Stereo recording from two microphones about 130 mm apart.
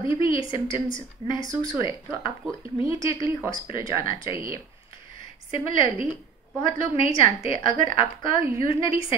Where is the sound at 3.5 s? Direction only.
40° left (ahead or behind).